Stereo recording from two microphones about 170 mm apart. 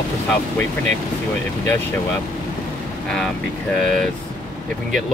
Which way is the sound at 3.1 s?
5° left (ahead or behind).